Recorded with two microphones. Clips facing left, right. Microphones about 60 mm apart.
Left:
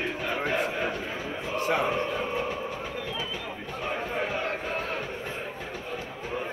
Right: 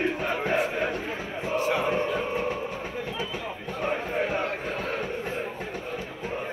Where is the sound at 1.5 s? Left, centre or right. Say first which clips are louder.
Right 1 dB; left.